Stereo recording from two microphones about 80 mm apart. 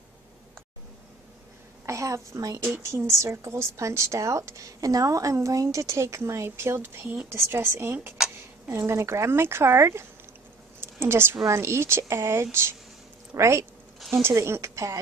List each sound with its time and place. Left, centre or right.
1.9 s a woman's voice: right
10.8 s a sound: right
11.4 s a woman's voice: right